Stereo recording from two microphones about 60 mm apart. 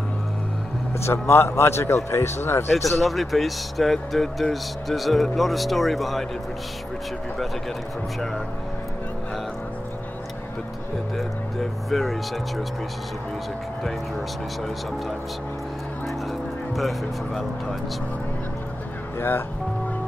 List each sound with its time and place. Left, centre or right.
0.9 s a man's voice: left
3.0 s speech: centre
11.1 s speech: centre
16.7 s speech: centre
19.1 s music: left